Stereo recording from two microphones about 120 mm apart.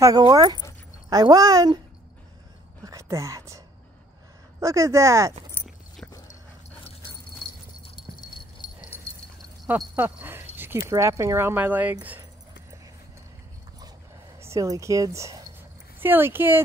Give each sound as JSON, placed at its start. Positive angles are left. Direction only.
{"t": 0.3, "sound": "speech", "side_deg": -35}
{"t": 2.8, "sound": "whispering", "side_deg": -30}
{"t": 4.6, "sound": "speech", "side_deg": -25}
{"t": 7.9, "sound": "horse", "side_deg": 40}
{"t": 9.9, "sound": "speech", "side_deg": -15}
{"t": 14.4, "sound": "speech", "side_deg": -25}